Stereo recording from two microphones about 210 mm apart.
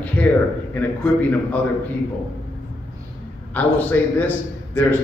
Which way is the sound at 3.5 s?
10° left (ahead or behind).